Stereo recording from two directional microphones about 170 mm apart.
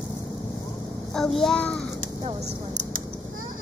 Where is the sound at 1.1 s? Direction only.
Centre (ahead or behind).